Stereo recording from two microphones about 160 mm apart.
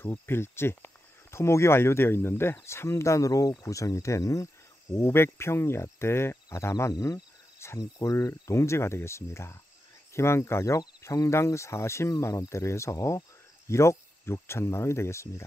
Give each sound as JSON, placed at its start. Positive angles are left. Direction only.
{"t": 0.0, "sound": "speech", "side_deg": 15}